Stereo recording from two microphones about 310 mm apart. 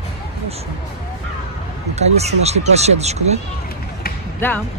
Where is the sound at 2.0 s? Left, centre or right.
Right.